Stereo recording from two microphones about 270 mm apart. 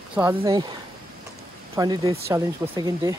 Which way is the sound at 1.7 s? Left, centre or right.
Centre.